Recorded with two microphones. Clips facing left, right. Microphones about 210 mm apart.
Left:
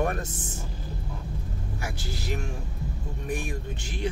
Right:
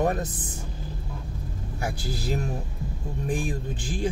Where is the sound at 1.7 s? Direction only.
30° right (ahead or behind).